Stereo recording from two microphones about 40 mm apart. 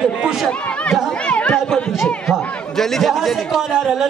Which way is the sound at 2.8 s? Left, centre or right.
Centre.